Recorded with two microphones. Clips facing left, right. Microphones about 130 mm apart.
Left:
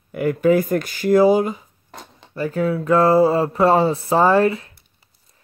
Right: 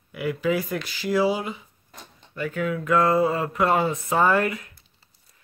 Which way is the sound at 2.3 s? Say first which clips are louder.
Left 6 dB; 35° left (ahead or behind).